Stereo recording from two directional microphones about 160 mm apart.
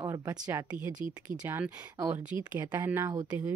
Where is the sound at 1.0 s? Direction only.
10° right (ahead or behind).